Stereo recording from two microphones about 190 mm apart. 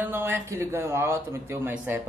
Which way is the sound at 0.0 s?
10° right (ahead or behind).